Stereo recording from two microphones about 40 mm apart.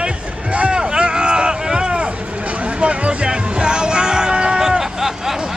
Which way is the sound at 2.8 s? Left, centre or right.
Right.